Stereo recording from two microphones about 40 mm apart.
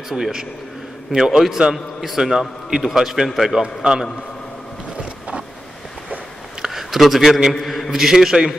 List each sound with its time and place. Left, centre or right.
0.1 s a man's voice: centre
3.6 s a man's voice: right
6.6 s a sound: centre
7.6 s a man's voice: centre